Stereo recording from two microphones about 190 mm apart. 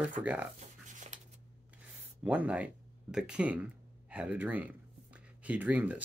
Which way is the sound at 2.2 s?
5° right (ahead or behind).